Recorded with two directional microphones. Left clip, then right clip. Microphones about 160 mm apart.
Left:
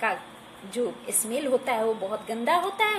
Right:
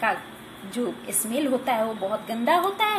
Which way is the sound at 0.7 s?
65° left (ahead or behind).